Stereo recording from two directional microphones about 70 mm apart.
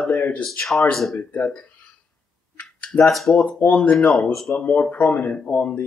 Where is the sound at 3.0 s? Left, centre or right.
Centre.